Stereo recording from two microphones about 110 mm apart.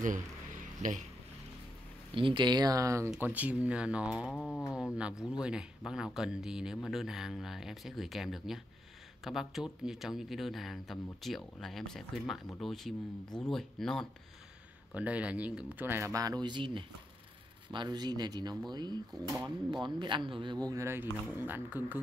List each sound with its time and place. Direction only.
0.8 s speech: 90° right
2.1 s speech: 50° right (ahead or behind); by 3.1 s 30° right (ahead or behind)
3.2 s speech: 15° right (ahead or behind)
4.3 s a sound: 10° left (ahead or behind)
4.7 s speech: 5° right (ahead or behind)
15.0 s speech: 10° right (ahead or behind); by 20.5 s 50° right (ahead or behind)
20.6 s speech: 25° right (ahead or behind)